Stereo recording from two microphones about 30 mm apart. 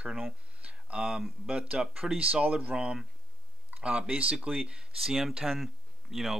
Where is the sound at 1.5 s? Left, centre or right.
Right.